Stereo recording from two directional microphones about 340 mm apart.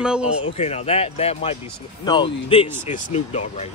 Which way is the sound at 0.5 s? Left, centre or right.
Centre.